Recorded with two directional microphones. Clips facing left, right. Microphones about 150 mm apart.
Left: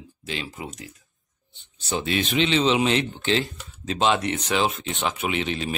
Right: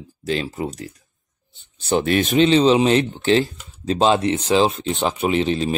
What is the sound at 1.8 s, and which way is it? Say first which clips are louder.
Speech: right 7 dB; 55° right (ahead or behind).